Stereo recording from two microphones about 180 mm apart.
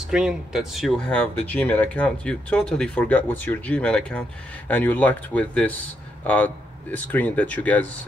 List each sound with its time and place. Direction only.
0.1 s speech: 5° right (ahead or behind)